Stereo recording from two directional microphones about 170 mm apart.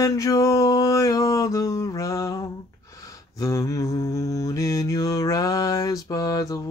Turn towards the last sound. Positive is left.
turn(degrees=20)  # may be behind; listen again after turning